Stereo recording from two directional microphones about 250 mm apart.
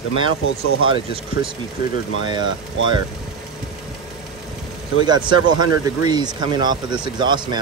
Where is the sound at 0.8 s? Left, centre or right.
Right.